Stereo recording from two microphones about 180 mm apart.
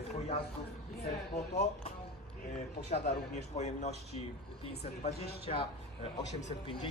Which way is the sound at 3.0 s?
40° left (ahead or behind).